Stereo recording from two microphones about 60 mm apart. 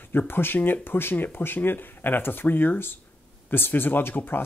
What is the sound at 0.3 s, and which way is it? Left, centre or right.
Speech, left.